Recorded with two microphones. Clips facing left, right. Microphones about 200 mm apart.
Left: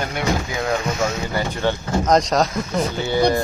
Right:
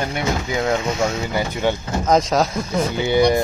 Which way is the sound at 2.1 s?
Centre (ahead or behind).